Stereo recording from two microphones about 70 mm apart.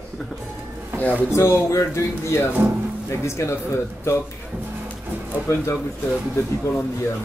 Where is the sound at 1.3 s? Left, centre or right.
Left.